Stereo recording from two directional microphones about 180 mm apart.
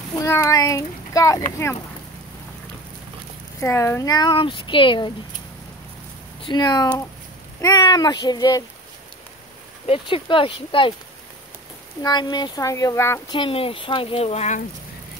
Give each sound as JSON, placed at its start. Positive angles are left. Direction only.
{"t": 0.2, "sound": "a child's voice", "side_deg": 15}
{"t": 3.6, "sound": "speech", "side_deg": 15}
{"t": 6.4, "sound": "speech", "side_deg": 25}
{"t": 9.8, "sound": "speech", "side_deg": 30}
{"t": 12.0, "sound": "speech", "side_deg": 25}
{"t": 13.4, "sound": "speech", "side_deg": 30}